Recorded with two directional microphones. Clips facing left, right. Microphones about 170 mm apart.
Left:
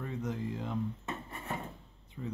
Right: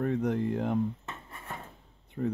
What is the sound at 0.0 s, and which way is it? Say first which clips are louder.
Speech: right 9 dB; 60° right (ahead or behind).